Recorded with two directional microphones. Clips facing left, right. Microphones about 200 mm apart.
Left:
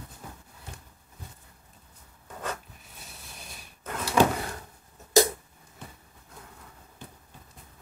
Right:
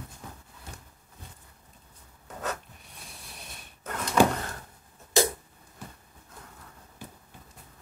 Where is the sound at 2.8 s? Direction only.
Centre (ahead or behind).